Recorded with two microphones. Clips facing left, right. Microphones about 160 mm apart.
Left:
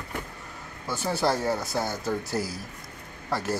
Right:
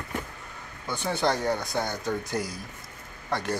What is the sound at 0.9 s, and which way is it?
Speech, 5° left (ahead or behind).